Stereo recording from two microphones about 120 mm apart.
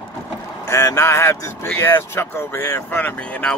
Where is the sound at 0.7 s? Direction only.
25° left (ahead or behind).